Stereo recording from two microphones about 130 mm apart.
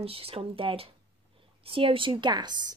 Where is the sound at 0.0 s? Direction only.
45° right (ahead or behind).